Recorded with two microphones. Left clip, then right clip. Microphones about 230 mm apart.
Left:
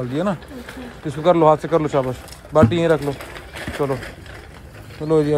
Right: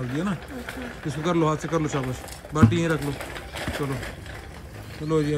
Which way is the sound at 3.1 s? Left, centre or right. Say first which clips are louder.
Left 4 dB; right.